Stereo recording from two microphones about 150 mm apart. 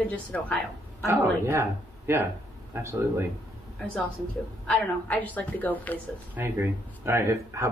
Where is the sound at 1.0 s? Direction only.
15° right (ahead or behind).